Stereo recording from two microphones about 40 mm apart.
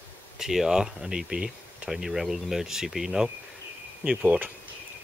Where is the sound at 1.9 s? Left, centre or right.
Centre.